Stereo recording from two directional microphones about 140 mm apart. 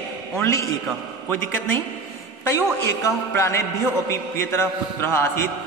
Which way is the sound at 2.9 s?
20° left (ahead or behind).